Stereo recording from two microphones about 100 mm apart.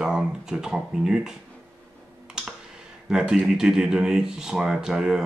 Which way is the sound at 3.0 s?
5° right (ahead or behind).